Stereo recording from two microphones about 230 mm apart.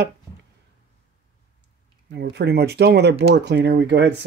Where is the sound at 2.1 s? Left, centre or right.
Right.